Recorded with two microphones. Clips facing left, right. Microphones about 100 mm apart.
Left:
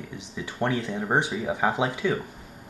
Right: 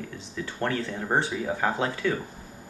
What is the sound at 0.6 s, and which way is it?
Speech, 15° left (ahead or behind).